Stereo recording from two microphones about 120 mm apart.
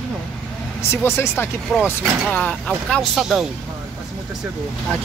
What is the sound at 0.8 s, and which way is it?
Speech, 20° left (ahead or behind).